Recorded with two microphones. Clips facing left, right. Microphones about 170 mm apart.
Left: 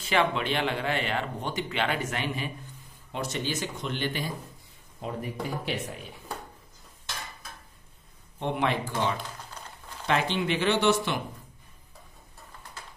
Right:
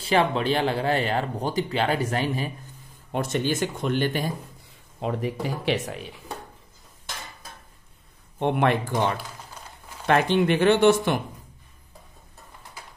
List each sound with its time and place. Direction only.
0.0 s speech: 35° right (ahead or behind)
3.1 s speech: 50° right (ahead or behind)
5.0 s speech: 90° right
8.4 s a man's voice: 60° right (ahead or behind)